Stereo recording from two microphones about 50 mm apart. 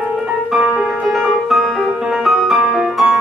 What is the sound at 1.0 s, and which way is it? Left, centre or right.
Music, centre.